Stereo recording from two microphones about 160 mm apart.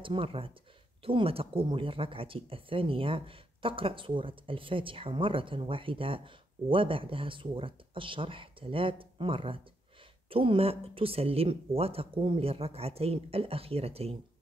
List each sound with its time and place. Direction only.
0.0 s speech: 35° right (ahead or behind)